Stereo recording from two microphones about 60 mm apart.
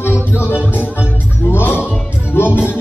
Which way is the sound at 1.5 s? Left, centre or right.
Left.